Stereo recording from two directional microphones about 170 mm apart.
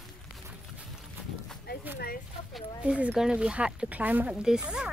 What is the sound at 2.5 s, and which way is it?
Speech, 5° right (ahead or behind).